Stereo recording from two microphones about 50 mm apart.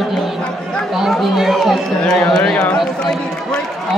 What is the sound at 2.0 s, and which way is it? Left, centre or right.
Speech, centre.